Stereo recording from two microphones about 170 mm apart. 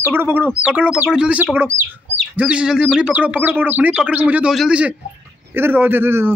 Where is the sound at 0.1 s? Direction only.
10° right (ahead or behind).